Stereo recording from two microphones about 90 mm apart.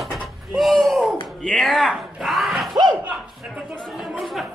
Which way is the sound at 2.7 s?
55° right (ahead or behind).